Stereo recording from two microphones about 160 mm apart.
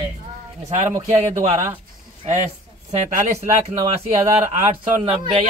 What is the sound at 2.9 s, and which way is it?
Speech, 45° right (ahead or behind).